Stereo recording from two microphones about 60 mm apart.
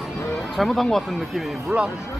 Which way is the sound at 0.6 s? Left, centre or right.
Centre.